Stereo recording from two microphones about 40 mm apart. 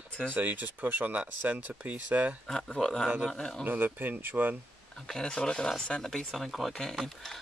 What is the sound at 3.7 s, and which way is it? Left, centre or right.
Speech, right.